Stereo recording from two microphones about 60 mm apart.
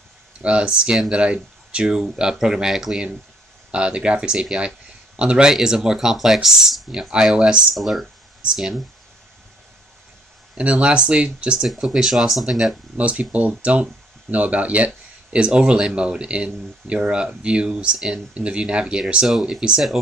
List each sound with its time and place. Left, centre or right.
0.4 s speech: centre
7.7 s speech: centre
10.6 s speech: centre
12.9 s speech: right